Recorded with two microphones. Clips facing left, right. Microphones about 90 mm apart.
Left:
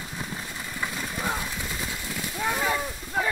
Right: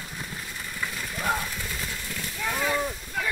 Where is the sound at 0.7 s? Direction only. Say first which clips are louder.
Left 2 dB; 20° left (ahead or behind).